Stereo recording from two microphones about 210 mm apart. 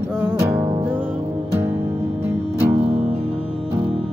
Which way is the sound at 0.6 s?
25° right (ahead or behind).